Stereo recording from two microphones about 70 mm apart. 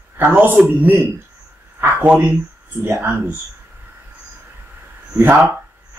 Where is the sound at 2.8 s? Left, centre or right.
Right.